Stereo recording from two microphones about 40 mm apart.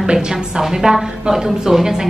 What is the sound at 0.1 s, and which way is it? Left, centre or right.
A woman's voice, centre.